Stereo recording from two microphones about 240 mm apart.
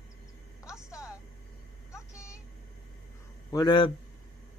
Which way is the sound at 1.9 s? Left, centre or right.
Centre.